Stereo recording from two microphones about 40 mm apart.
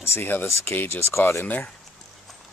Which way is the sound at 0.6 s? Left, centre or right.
Left.